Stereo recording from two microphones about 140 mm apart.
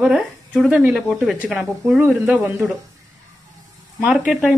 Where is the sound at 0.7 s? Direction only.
5° right (ahead or behind).